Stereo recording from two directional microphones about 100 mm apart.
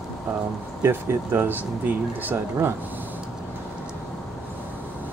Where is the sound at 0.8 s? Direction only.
25° right (ahead or behind).